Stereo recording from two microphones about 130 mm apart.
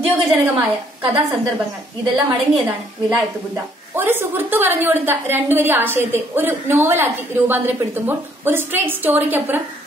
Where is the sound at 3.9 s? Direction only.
15° right (ahead or behind).